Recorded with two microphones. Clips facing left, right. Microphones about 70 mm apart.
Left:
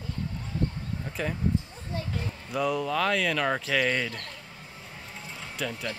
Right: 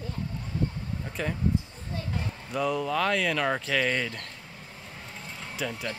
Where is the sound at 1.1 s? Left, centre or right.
Centre.